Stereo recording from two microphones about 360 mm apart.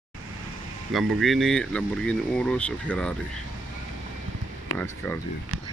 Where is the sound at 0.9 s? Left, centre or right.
Centre.